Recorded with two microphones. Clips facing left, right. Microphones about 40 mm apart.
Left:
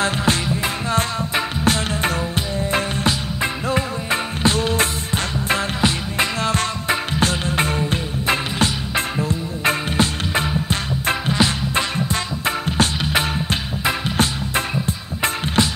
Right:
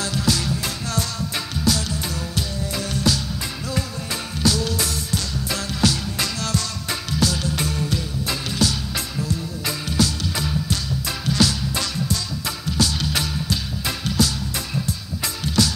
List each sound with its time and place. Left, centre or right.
0.0 s music: left